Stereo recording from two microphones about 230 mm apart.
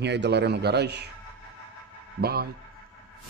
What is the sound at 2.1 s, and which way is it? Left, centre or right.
Speech, right.